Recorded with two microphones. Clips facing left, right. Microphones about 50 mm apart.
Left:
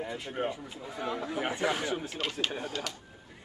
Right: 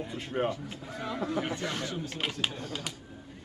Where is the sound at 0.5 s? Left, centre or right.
Centre.